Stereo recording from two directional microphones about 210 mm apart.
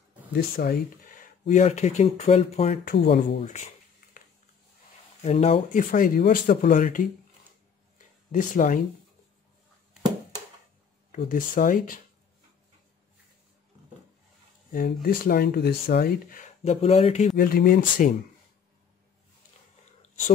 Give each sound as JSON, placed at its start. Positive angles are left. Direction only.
{"t": 0.6, "sound": "speech", "side_deg": 45}
{"t": 2.8, "sound": "speech", "side_deg": 45}
{"t": 3.3, "sound": "a sound", "side_deg": 35}
{"t": 5.2, "sound": "speech", "side_deg": 30}
{"t": 8.3, "sound": "speech", "side_deg": 40}
{"t": 11.1, "sound": "speech", "side_deg": 40}
{"t": 14.7, "sound": "speech", "side_deg": 45}
{"t": 17.4, "sound": "speech", "side_deg": 45}